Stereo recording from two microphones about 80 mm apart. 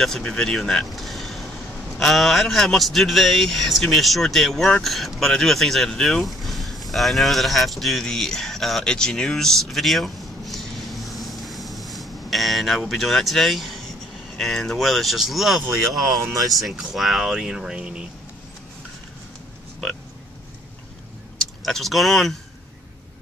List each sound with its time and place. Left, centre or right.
0.0 s speech: centre
15.8 s speech: right
16.4 s speech: centre
21.6 s speech: centre